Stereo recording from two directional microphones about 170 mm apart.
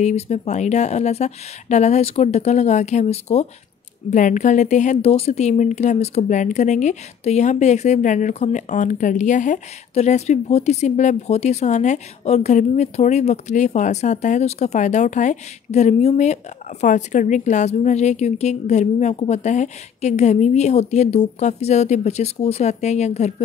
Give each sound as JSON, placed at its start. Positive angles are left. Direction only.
{"t": 0.0, "sound": "a woman's voice", "side_deg": 40}